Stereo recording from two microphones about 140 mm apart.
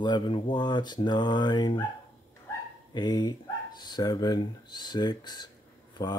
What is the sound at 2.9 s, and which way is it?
Speech, 30° left (ahead or behind).